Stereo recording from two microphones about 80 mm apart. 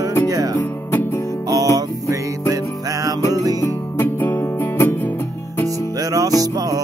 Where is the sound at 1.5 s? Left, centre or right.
Right.